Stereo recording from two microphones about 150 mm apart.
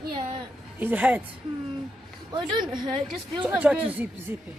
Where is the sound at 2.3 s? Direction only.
30° right (ahead or behind).